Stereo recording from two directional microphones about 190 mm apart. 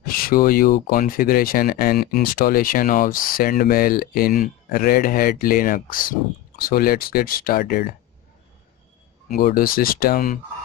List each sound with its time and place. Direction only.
0.0 s speech: 50° left (ahead or behind)
9.4 s speech: 50° left (ahead or behind)